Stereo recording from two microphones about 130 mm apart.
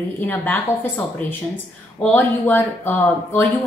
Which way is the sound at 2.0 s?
10° left (ahead or behind).